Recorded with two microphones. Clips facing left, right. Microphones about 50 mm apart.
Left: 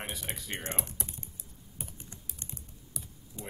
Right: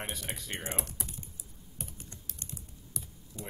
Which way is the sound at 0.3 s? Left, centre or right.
Centre.